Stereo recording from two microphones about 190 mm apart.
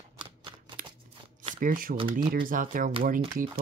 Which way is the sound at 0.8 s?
45° right (ahead or behind).